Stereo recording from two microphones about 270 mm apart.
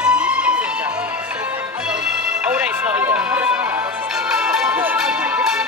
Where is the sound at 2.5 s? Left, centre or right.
Centre.